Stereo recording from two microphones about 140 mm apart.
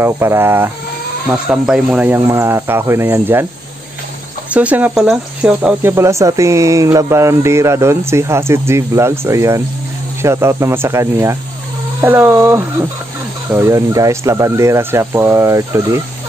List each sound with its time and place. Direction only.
0.0 s speech: 20° right (ahead or behind)
1.3 s speech: 5° right (ahead or behind)
4.5 s speech: 10° right (ahead or behind)